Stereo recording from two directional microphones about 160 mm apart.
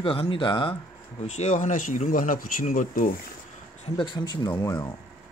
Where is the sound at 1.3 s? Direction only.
45° left (ahead or behind).